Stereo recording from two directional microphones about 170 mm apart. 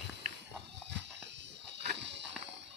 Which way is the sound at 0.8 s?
90° right.